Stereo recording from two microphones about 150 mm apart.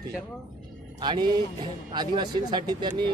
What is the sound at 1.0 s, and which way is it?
Speech, 30° right (ahead or behind).